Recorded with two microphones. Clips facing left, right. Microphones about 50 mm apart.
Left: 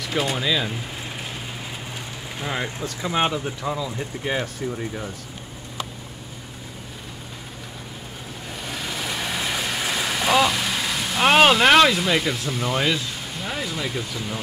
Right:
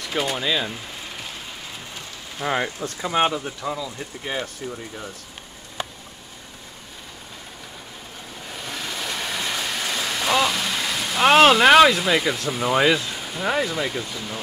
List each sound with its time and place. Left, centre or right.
0.0 s speech: centre
2.4 s speech: centre
3.4 s speech: centre
8.5 s vehicle: centre
13.7 s speech: centre
13.9 s speech: centre